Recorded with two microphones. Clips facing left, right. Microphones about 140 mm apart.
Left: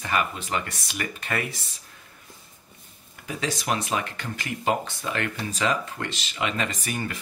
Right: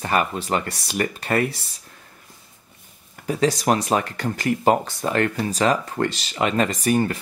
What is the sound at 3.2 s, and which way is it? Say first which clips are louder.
Speech: right 8 dB; 40° right (ahead or behind).